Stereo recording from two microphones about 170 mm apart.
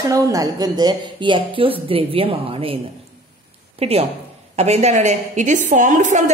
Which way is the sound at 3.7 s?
35° right (ahead or behind).